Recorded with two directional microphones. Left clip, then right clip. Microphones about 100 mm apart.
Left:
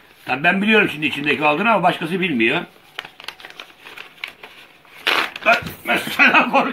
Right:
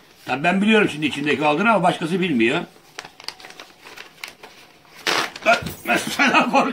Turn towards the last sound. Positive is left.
turn(degrees=-30)  # may be behind; listen again after turning